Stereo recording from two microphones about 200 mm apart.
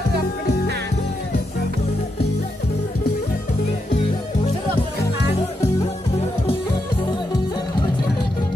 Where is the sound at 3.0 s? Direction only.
45° left (ahead or behind).